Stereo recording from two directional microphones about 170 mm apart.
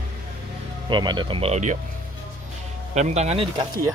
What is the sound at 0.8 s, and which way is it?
Speech, 25° right (ahead or behind).